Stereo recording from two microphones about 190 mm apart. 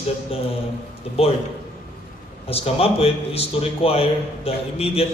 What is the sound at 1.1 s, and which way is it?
Speech, 30° left (ahead or behind).